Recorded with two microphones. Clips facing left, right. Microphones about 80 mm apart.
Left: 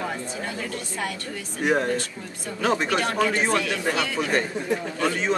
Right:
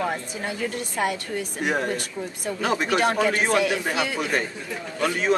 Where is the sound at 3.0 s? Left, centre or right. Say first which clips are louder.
Right 2 dB; right.